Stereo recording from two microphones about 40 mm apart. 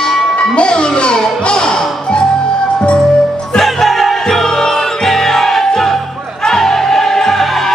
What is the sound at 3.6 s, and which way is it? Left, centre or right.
Music, centre.